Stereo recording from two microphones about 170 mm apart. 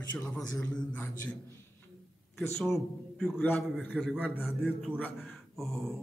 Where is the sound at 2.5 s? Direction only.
Centre (ahead or behind).